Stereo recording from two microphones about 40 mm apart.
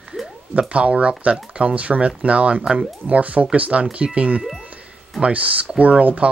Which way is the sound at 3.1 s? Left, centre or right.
Right.